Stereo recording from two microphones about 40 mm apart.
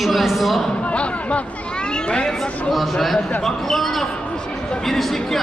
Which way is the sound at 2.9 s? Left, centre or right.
Centre.